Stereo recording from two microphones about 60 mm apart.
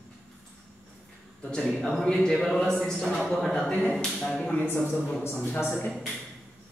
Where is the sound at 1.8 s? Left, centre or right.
Centre.